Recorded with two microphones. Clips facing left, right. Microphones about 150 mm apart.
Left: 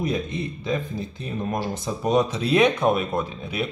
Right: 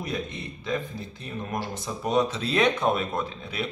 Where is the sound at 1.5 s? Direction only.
20° left (ahead or behind).